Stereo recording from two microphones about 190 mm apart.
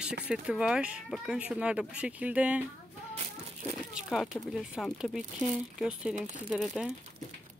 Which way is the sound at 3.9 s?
Centre (ahead or behind).